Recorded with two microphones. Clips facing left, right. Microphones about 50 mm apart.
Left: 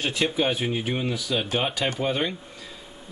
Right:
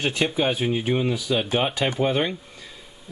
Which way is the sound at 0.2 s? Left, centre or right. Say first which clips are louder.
Even; centre.